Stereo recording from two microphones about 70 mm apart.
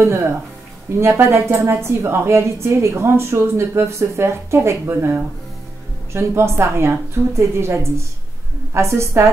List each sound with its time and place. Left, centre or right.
0.0 s a woman's voice: right